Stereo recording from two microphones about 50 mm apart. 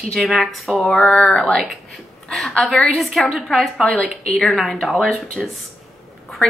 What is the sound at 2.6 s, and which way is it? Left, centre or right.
Speech, centre.